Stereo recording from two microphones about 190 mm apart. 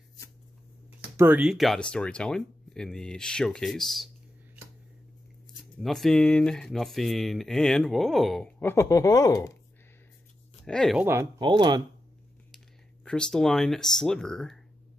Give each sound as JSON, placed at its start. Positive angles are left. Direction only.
{"t": 1.1, "sound": "speech", "side_deg": -10}
{"t": 5.8, "sound": "speech", "side_deg": 0}
{"t": 10.6, "sound": "speech", "side_deg": 5}
{"t": 11.1, "sound": "speech", "side_deg": -15}
{"t": 13.0, "sound": "speech", "side_deg": 5}